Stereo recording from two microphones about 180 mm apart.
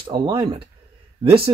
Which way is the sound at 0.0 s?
30° right (ahead or behind).